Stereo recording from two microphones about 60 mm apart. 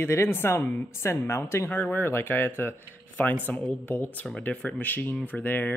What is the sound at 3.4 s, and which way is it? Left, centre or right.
Speech, left.